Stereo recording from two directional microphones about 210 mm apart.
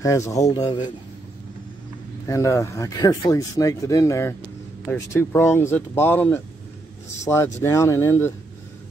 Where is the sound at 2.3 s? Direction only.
15° left (ahead or behind).